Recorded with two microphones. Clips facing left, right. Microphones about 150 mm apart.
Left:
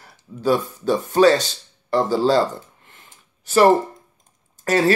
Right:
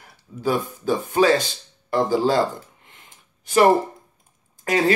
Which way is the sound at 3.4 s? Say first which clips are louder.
Left 2 dB; 15° right (ahead or behind).